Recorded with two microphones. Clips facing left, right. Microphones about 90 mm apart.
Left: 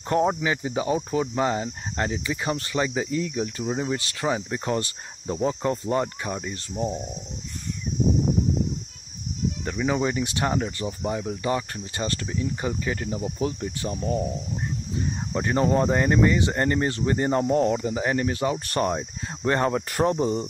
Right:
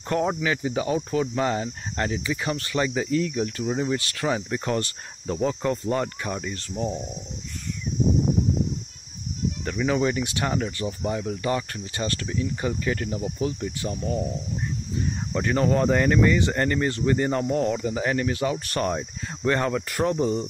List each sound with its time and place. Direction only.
0.1 s speech: 20° left (ahead or behind)
3.9 s speech: 25° left (ahead or behind)
9.8 s speech: 20° left (ahead or behind)
12.3 s speech: 20° left (ahead or behind)
13.4 s speech: 35° left (ahead or behind)
15.3 s speech: 25° left (ahead or behind)